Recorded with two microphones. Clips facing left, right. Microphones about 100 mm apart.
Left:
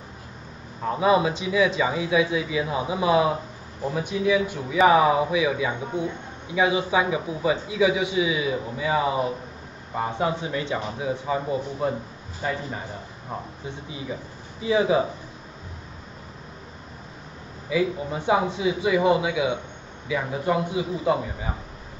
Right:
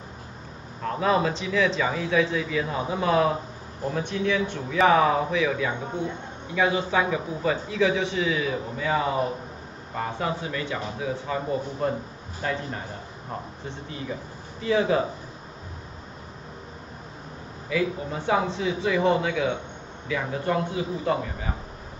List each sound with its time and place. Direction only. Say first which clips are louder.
0.8 s a man's voice: left 3 dB; 10° left (ahead or behind)
17.6 s a man's voice: left 2 dB; 15° left (ahead or behind)